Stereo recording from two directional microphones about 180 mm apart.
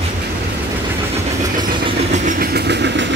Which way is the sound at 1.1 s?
25° right (ahead or behind).